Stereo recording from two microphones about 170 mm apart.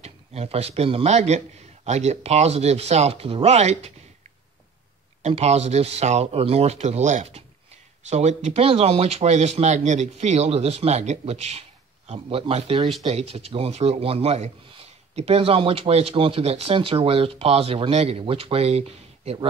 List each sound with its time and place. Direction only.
0.0 s a man's voice: 40° right (ahead or behind)